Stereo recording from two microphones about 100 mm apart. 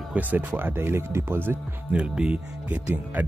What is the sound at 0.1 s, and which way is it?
Speech, 15° right (ahead or behind).